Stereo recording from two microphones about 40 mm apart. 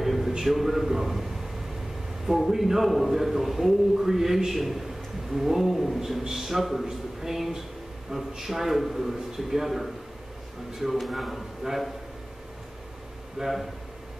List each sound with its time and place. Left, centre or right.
0.0 s a sound: centre
0.4 s a man's voice: centre
13.4 s a man's voice: centre